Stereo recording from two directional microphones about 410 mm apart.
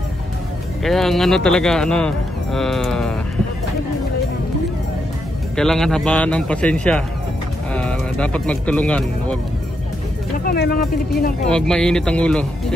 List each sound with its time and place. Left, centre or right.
0.8 s speech: centre
5.6 s speech: centre
10.4 s speech: left
11.4 s speech: centre